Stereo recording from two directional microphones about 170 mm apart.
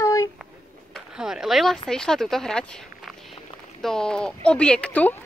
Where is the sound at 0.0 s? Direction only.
20° left (ahead or behind).